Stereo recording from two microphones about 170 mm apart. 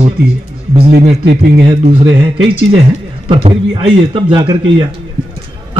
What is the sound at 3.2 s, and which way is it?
A man's voice, 30° right (ahead or behind).